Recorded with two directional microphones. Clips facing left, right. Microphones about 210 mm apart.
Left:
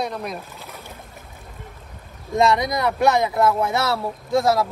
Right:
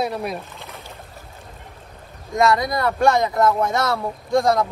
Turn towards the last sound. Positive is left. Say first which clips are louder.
# right 1 dB
turn(degrees=5)  # may be behind; listen again after turning